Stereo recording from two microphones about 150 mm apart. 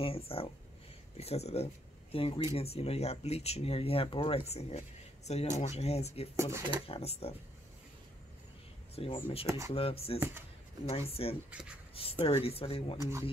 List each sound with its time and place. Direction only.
0.0 s speech: 40° left (ahead or behind)
6.3 s speech: 20° right (ahead or behind)
6.9 s speech: 40° left (ahead or behind)
8.9 s speech: 40° left (ahead or behind)